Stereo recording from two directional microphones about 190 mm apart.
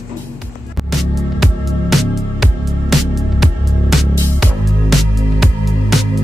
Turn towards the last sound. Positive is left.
turn(degrees=0)  # may be behind; listen again after turning